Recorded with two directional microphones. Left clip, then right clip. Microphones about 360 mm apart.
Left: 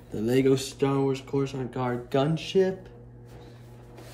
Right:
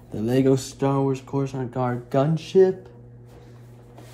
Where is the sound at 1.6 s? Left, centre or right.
Centre.